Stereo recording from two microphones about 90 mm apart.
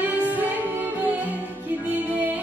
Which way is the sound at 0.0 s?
20° right (ahead or behind).